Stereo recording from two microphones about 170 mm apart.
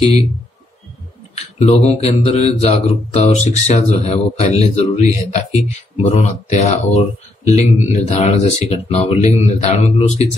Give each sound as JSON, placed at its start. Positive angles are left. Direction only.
{"t": 1.3, "sound": "speech", "side_deg": 35}